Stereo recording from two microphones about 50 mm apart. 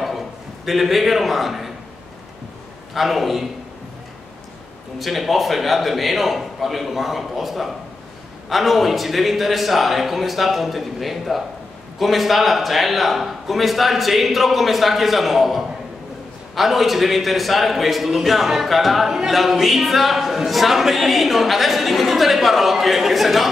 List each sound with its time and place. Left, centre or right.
0.7 s a man's voice: centre
2.9 s a man's voice: centre
4.9 s a man's voice: centre